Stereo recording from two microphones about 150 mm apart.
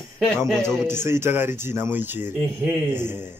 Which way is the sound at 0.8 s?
15° right (ahead or behind).